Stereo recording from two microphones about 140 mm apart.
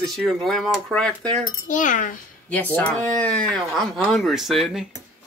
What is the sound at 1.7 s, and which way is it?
Speech, 65° left (ahead or behind).